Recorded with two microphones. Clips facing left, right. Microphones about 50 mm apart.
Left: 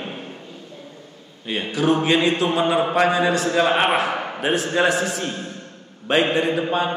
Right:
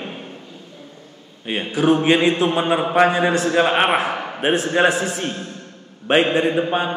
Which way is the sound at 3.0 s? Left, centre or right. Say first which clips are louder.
Right 1 dB; right.